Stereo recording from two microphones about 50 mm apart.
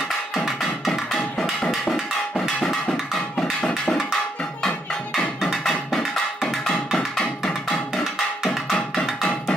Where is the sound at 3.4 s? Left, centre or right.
Centre.